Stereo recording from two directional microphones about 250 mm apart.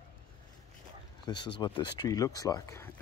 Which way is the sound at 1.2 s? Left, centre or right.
Centre.